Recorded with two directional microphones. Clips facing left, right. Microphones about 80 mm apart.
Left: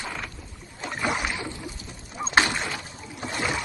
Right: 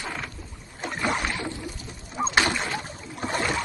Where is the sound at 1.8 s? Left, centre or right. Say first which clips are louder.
Right 9 dB; right.